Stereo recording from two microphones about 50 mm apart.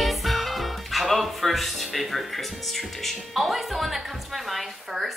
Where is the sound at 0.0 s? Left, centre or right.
Centre.